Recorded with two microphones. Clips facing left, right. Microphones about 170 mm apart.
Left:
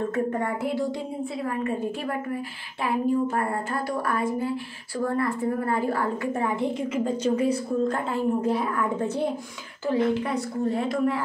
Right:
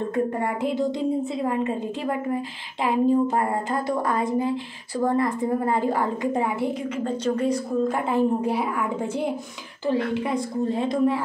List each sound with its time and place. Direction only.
0.1 s a woman's voice: 15° right (ahead or behind)
6.8 s a woman's voice: 10° left (ahead or behind)
7.9 s a woman's voice: 10° right (ahead or behind)